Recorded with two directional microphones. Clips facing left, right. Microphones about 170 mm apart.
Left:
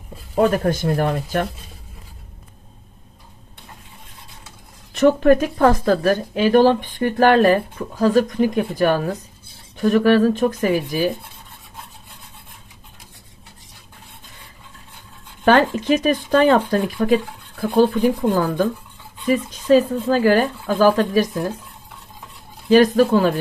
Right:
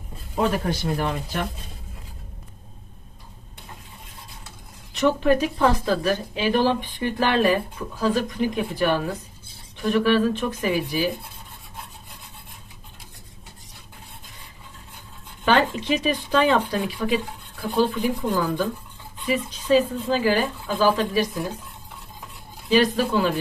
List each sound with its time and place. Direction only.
0.4 s a woman's voice: 50° left (ahead or behind)
4.9 s a woman's voice: 50° left (ahead or behind)
15.4 s a woman's voice: 50° left (ahead or behind)
19.2 s a woman's voice: 45° left (ahead or behind)
22.7 s a woman's voice: 45° left (ahead or behind)